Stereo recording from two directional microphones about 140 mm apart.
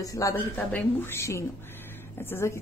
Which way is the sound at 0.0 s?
25° left (ahead or behind).